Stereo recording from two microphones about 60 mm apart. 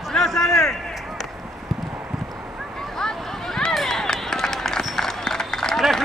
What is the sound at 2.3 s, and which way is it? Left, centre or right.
Boat, centre.